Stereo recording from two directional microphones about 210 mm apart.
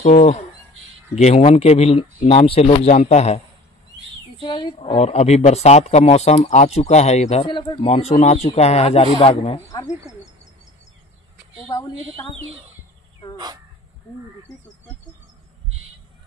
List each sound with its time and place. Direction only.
0.0 s a man's voice: 30° left (ahead or behind)
4.4 s speech: 25° left (ahead or behind)